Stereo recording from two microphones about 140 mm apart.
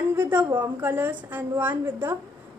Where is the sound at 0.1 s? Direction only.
15° right (ahead or behind).